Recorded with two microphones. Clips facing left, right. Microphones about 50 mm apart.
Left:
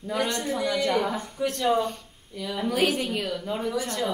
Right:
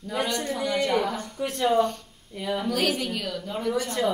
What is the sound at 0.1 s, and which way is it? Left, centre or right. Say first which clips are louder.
A woman's voice: left 1 dB; centre.